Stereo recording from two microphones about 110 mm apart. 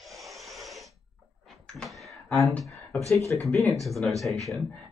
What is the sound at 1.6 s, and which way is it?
Cupboard open or close, centre (ahead or behind).